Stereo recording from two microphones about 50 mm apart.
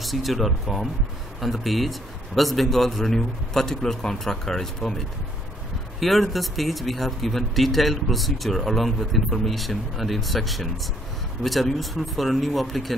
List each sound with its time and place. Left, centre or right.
0.0 s speech: centre